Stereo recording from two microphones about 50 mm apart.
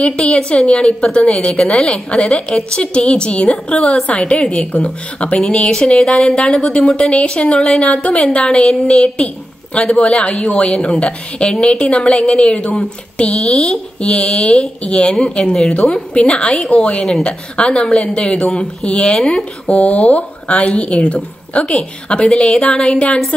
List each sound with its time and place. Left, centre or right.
0.0 s a woman's voice: centre